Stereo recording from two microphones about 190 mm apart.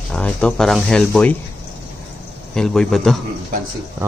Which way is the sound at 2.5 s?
5° left (ahead or behind).